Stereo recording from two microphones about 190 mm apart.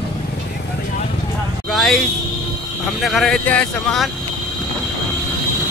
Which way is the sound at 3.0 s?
Centre (ahead or behind).